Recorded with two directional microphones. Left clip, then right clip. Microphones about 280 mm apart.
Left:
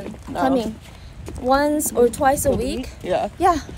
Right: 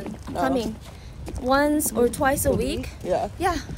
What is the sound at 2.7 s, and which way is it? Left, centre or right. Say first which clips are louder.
Speech: left 3 dB; left.